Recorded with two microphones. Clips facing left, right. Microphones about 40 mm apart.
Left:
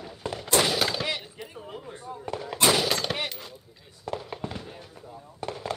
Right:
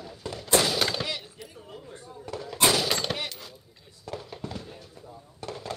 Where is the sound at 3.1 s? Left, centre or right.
Centre.